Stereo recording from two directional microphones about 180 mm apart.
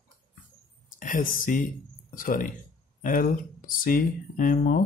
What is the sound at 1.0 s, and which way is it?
Speech, 50° left (ahead or behind).